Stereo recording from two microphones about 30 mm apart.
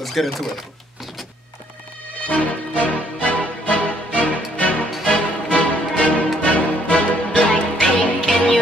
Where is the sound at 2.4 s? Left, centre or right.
Left.